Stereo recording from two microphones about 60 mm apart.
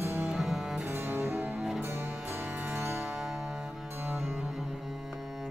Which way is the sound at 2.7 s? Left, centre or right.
Right.